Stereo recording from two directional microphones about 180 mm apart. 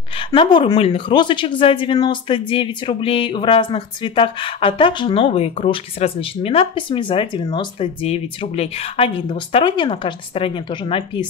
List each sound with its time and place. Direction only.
0.3 s a woman's voice: 30° left (ahead or behind)